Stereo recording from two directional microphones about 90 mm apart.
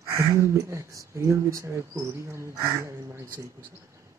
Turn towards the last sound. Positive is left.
turn(degrees=-35)  # may be behind; listen again after turning